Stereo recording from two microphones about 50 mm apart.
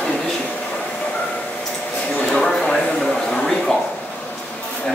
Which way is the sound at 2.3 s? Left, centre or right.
Centre.